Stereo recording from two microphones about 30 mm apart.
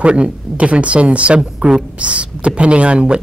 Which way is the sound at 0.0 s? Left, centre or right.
Right.